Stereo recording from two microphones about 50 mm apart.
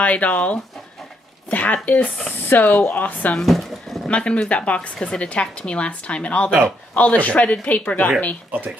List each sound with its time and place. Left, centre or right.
0.0 s a woman's voice: left
3.4 s speech: centre
4.1 s a woman's voice: left